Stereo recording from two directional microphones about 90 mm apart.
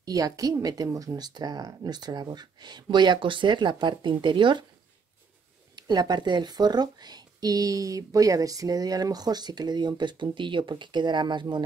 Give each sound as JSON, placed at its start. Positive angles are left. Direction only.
{"t": 0.0, "sound": "speech", "side_deg": -45}
{"t": 5.8, "sound": "speech", "side_deg": -50}